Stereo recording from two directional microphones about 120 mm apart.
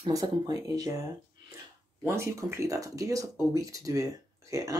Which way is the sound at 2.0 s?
25° right (ahead or behind).